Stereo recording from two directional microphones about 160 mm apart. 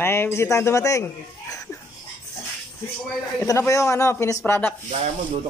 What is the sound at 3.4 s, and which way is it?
Speech, 20° left (ahead or behind).